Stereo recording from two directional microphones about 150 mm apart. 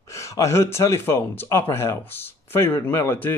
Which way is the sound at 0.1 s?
20° left (ahead or behind).